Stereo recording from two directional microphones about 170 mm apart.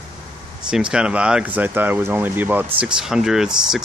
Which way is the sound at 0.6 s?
5° right (ahead or behind).